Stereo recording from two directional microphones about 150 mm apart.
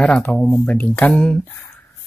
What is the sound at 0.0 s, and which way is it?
Speech, 5° left (ahead or behind).